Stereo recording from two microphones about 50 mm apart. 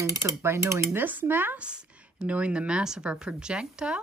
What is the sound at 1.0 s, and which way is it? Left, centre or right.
Speech, right.